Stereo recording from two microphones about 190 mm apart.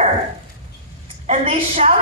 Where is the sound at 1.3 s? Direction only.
40° right (ahead or behind).